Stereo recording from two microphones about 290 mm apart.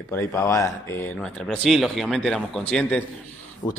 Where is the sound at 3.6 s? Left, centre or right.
Centre.